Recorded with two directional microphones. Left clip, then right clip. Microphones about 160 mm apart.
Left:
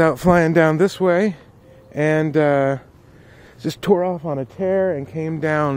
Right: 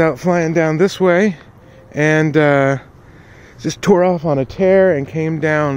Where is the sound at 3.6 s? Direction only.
10° left (ahead or behind).